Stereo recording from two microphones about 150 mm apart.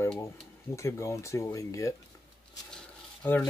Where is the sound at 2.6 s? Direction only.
10° left (ahead or behind).